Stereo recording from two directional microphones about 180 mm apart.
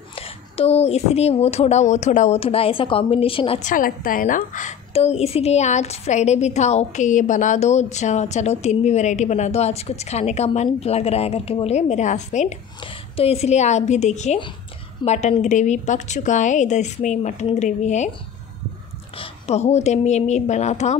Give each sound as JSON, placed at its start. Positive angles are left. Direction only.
{"t": 0.1, "sound": "a woman's voice", "side_deg": 30}
{"t": 3.6, "sound": "a woman's voice", "side_deg": 50}
{"t": 19.1, "sound": "a woman's voice", "side_deg": 35}